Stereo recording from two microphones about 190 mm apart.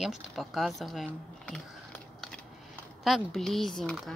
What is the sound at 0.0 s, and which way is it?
Speech, centre (ahead or behind).